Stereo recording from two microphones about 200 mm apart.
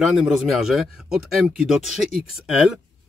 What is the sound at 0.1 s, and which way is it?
Speech, centre (ahead or behind).